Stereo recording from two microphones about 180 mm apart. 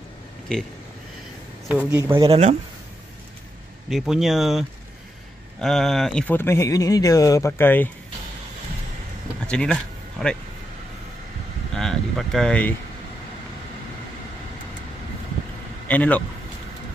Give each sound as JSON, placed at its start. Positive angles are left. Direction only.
{"t": 1.9, "sound": "speech", "side_deg": -10}
{"t": 2.1, "sound": "speech", "side_deg": -30}
{"t": 3.9, "sound": "speech", "side_deg": 0}
{"t": 9.5, "sound": "speech", "side_deg": 5}
{"t": 11.7, "sound": "speech", "side_deg": 5}
{"t": 15.9, "sound": "speech", "side_deg": 10}